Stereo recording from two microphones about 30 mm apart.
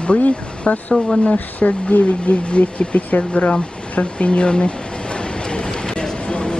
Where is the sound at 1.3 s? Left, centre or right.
Left.